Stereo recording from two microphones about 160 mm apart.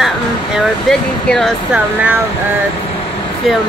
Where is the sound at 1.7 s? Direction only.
10° right (ahead or behind).